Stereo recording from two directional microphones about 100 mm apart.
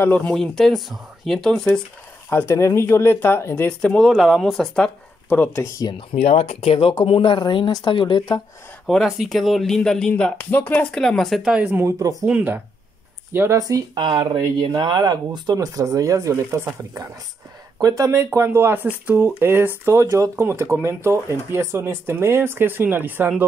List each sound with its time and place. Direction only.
0.0 s speech: 15° left (ahead or behind)
0.3 s speech: 5° left (ahead or behind)
2.2 s speech: 25° left (ahead or behind)
3.6 s speech: 10° left (ahead or behind)
4.1 s speech: centre (ahead or behind); by 5.7 s 15° left (ahead or behind)
5.9 s speech: 70° left (ahead or behind); by 8.4 s 50° left (ahead or behind)
8.8 s speech: centre (ahead or behind)
11.8 s speech: 35° right (ahead or behind)
12.3 s speech: 15° right (ahead or behind)
13.6 s speech: 40° right (ahead or behind)
14.0 s speech: 50° right (ahead or behind); by 16.6 s 30° right (ahead or behind)
17.7 s speech: 35° right (ahead or behind); by 23.4 s 15° right (ahead or behind)